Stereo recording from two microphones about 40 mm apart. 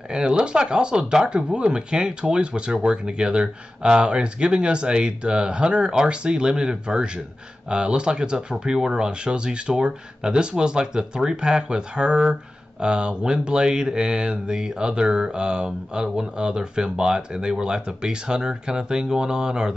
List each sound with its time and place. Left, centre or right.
0.1 s speech: right